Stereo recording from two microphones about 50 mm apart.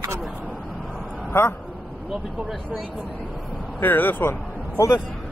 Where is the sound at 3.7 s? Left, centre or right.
Left.